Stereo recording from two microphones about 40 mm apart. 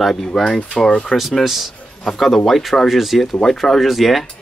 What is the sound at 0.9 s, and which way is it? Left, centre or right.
Speech, left.